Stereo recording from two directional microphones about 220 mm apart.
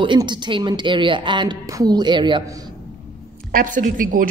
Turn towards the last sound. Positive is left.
turn(degrees=-40)  # may be behind; listen again after turning